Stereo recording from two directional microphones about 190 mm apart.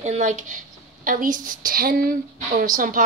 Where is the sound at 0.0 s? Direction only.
40° right (ahead or behind).